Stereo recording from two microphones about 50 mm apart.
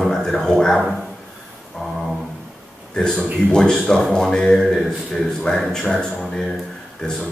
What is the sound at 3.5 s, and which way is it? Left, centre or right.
A man's voice, centre.